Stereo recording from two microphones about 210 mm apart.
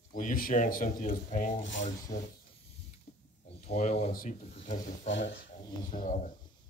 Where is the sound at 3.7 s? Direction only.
30° left (ahead or behind).